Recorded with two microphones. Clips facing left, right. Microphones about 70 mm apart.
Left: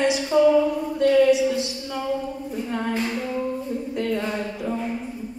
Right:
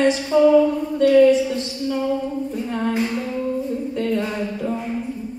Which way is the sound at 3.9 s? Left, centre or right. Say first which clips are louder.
Right 2 dB; centre.